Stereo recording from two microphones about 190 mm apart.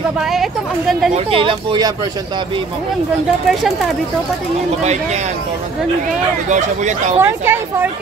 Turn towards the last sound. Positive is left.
turn(degrees=-10)  # may be behind; listen again after turning